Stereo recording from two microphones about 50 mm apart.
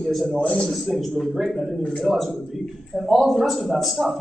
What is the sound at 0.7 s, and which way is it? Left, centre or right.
Speech, centre.